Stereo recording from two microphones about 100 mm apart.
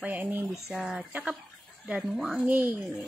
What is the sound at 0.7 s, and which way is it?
A woman's voice, 5° right (ahead or behind).